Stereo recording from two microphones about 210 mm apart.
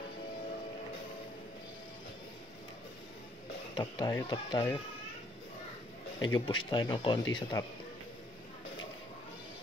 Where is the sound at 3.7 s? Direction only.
20° left (ahead or behind).